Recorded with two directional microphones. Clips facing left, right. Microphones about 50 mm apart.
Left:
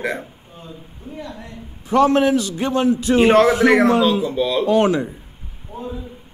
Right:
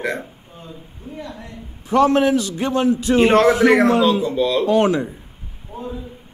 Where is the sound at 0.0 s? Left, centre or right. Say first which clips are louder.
Even; centre.